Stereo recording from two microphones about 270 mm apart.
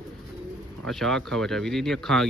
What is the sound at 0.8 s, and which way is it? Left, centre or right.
Speech, centre.